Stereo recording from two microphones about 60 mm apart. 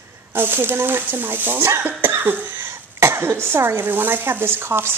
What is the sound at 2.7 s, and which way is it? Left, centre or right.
Speech, right.